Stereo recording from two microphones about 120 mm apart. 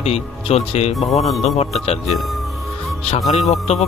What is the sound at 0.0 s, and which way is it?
Speech, 60° left (ahead or behind).